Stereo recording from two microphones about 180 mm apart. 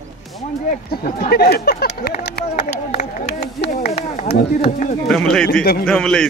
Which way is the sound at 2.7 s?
40° left (ahead or behind).